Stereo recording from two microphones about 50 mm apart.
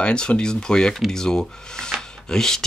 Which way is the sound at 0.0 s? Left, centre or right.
Left.